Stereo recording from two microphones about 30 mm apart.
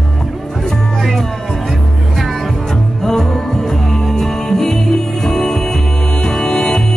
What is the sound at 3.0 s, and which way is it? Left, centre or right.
Music, centre.